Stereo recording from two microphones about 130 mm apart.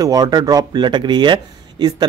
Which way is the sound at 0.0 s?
30° right (ahead or behind).